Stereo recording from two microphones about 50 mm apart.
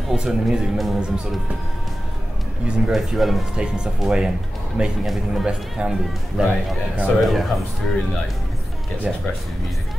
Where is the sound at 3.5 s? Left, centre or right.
Centre.